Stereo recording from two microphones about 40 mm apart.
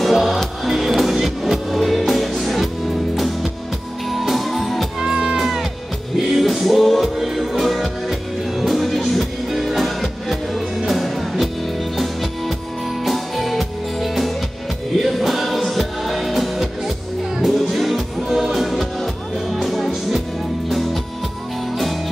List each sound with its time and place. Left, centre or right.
0.0 s music: centre
5.0 s music: centre
5.4 s music: centre